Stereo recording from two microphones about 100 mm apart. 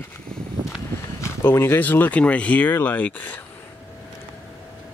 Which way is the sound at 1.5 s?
20° left (ahead or behind).